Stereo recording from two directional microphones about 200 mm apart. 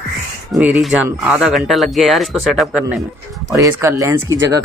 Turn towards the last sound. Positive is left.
turn(degrees=-15)  # may be behind; listen again after turning